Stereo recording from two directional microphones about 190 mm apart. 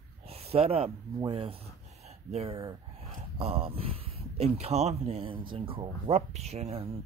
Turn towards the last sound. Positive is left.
turn(degrees=-35)  # may be behind; listen again after turning